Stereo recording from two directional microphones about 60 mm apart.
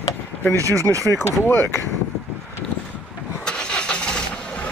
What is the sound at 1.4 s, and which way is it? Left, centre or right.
Speech, left.